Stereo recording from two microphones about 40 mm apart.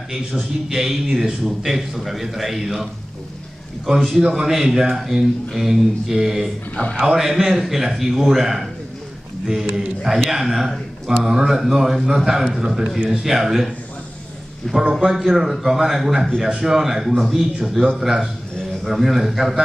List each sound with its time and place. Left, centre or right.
0.4 s a man's voice: centre
4.2 s a man's voice: centre
6.7 s a man's voice: left
7.1 s speech: centre
14.7 s a man's voice: centre
15.0 s a man's voice: centre